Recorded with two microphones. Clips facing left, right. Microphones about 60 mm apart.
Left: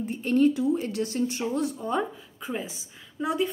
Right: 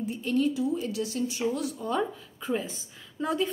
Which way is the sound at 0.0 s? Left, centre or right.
Left.